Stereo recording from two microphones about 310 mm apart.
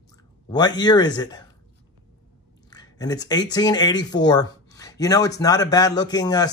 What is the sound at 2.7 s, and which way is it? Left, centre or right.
Speech, centre.